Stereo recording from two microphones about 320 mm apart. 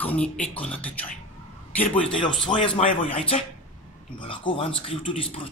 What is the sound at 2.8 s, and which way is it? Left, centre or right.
A man's voice, centre.